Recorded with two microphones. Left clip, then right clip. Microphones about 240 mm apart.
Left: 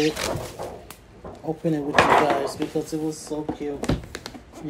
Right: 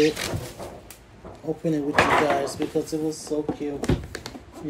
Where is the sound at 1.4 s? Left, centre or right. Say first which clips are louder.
Even; centre.